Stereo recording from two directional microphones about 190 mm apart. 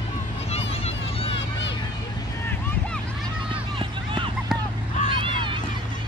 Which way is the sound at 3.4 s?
25° right (ahead or behind).